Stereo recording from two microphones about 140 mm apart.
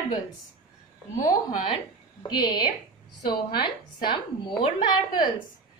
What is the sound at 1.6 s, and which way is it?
A woman's voice, 35° left (ahead or behind).